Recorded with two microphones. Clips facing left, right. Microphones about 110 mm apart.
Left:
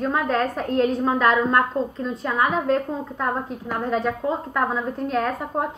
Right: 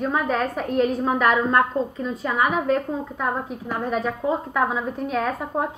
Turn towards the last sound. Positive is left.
turn(degrees=0)  # may be behind; listen again after turning